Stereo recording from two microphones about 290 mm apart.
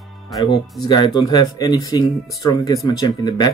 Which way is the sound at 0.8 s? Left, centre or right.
Centre.